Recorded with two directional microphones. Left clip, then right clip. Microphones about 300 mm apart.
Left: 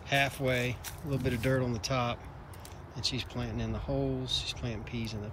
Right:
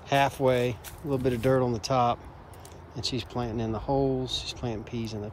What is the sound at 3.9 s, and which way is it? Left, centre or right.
Speech, right.